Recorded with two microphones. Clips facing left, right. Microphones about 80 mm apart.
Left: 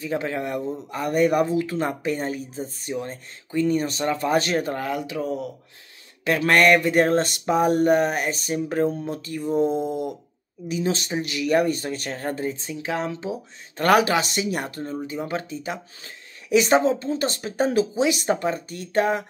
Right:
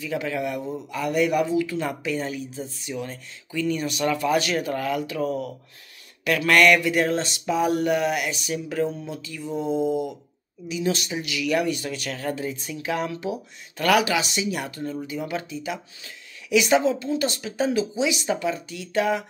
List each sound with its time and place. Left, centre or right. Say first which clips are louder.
0.0 s speech: left 1 dB; left
4.8 s speech: right 1 dB; left
6.2 s speech: even; left
10.7 s speech: left 1 dB; left
13.8 s speech: left 2 dB; left